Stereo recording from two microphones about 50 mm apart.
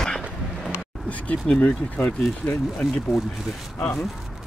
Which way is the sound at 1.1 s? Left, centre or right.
Left.